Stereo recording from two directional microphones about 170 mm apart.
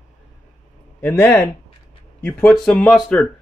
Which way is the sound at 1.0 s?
10° left (ahead or behind).